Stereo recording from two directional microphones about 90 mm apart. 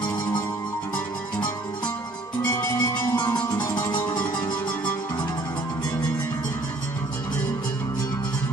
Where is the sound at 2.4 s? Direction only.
30° left (ahead or behind).